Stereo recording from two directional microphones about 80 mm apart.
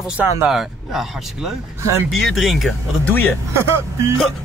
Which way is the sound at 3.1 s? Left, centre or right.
Left.